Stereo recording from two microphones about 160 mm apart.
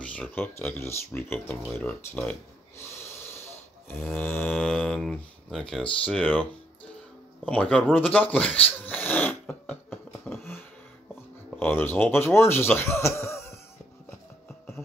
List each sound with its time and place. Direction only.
0.0 s speech: 10° left (ahead or behind)
2.8 s snort: 15° left (ahead or behind)
4.2 s speech: 10° left (ahead or behind)
7.4 s speech: 10° left (ahead or behind)
10.3 s a sound: centre (ahead or behind)
11.5 s speech: 15° left (ahead or behind)